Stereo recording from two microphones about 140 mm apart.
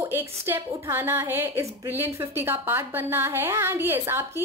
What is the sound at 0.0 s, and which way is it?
A woman's voice, 15° right (ahead or behind).